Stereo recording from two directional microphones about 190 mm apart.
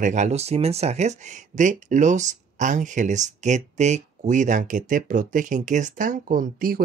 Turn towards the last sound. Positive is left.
turn(degrees=-45)  # may be behind; listen again after turning